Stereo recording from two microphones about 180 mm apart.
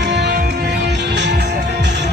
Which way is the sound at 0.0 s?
75° right (ahead or behind).